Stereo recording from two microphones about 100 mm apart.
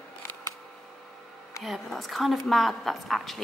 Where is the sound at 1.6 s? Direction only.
Centre (ahead or behind).